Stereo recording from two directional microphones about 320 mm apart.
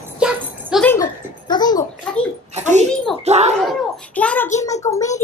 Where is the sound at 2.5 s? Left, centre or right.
Right.